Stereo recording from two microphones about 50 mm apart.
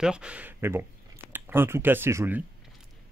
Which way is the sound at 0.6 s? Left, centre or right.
Right.